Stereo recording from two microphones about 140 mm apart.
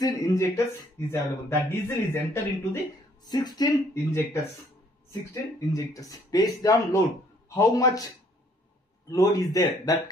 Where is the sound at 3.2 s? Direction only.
30° left (ahead or behind).